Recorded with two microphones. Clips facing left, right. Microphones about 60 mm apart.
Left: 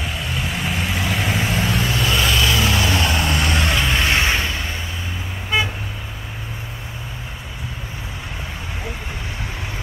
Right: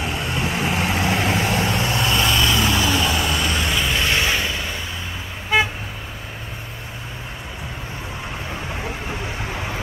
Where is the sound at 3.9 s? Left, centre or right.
Centre.